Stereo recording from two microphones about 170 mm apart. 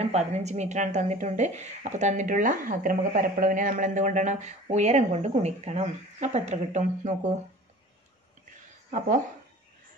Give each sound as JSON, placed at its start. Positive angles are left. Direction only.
{"t": 0.0, "sound": "speech", "side_deg": -40}
{"t": 8.9, "sound": "speech", "side_deg": -50}